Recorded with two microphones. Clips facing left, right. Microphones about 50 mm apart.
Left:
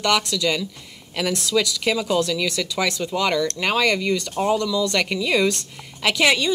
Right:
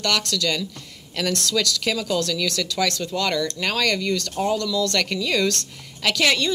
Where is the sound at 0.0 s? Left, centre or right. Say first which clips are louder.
Left 3 dB; centre.